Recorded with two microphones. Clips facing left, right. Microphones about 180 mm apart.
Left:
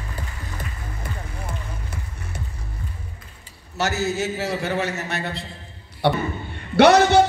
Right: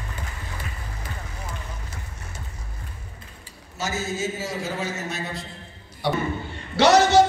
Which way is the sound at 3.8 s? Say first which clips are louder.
Left 4 dB; 70° left (ahead or behind).